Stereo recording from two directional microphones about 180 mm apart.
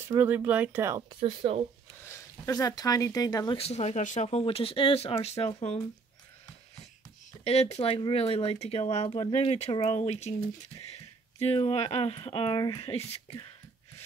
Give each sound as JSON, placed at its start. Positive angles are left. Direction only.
{"t": 0.1, "sound": "speech", "side_deg": -10}
{"t": 1.2, "sound": "speech", "side_deg": -35}
{"t": 2.0, "sound": "speech", "side_deg": 15}
{"t": 7.4, "sound": "speech", "side_deg": 35}
{"t": 11.3, "sound": "speech", "side_deg": 35}